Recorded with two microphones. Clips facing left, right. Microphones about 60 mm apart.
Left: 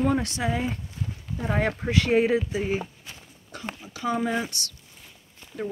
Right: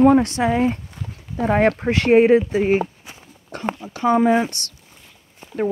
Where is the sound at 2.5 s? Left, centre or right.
Right.